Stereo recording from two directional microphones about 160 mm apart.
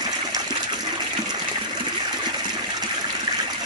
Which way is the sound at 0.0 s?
25° right (ahead or behind).